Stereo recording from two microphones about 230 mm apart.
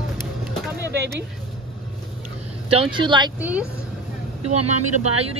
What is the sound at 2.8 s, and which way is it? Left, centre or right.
Speech, centre.